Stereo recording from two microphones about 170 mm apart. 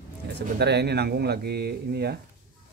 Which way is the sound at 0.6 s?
75° right (ahead or behind).